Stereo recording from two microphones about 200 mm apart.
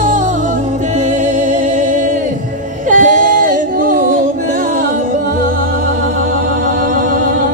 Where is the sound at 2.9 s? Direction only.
40° right (ahead or behind).